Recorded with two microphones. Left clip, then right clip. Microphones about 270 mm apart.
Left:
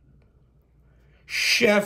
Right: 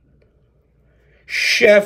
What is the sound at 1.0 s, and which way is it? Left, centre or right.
Speech, centre.